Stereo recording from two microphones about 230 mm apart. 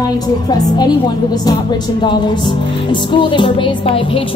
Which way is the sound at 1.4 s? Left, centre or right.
Centre.